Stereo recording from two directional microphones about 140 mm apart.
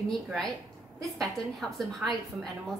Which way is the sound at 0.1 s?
Centre (ahead or behind).